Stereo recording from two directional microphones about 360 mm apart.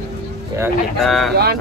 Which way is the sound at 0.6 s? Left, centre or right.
Centre.